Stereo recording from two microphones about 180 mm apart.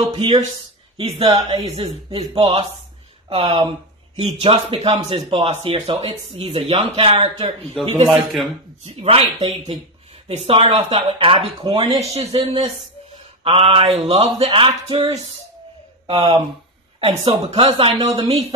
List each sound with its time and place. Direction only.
0.1 s a man's voice: 30° right (ahead or behind)
8.1 s a man's voice: centre (ahead or behind)
8.8 s speech: 35° right (ahead or behind)
16.1 s speech: 35° right (ahead or behind)